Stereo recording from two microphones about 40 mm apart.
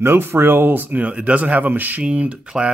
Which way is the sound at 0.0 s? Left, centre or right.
Right.